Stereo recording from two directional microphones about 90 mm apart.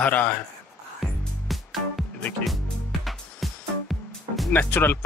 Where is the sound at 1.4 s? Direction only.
Centre (ahead or behind).